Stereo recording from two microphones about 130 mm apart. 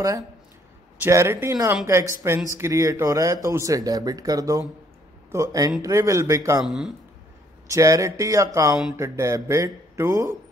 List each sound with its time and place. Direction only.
0.9 s speech: 20° right (ahead or behind)
6.6 s speech: centre (ahead or behind)
7.6 s speech: 25° right (ahead or behind)